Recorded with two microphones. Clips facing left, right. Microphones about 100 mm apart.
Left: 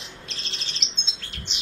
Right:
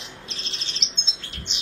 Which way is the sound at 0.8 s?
Centre (ahead or behind).